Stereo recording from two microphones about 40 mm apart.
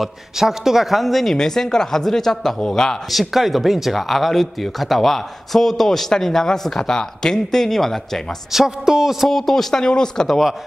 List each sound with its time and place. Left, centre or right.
0.0 s speech: centre
1.3 s speech: centre
3.1 s speech: centre
8.5 s speech: centre
9.3 s speech: centre
9.8 s speech: left